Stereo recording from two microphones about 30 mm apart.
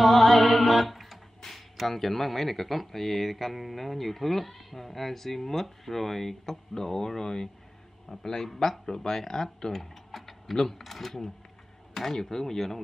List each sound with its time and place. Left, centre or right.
0.0 s music: centre
1.5 s speech: centre